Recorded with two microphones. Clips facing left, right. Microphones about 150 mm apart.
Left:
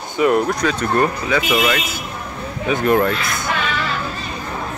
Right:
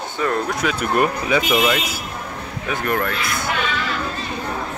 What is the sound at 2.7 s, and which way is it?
Speech, 20° left (ahead or behind).